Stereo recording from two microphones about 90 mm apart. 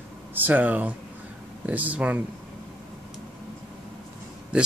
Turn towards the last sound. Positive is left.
turn(degrees=-10)  # may be behind; listen again after turning